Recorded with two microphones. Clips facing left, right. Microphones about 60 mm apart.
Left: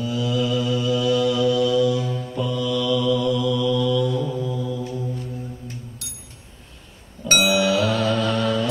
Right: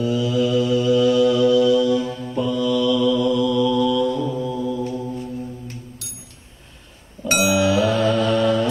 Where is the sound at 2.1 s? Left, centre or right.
Right.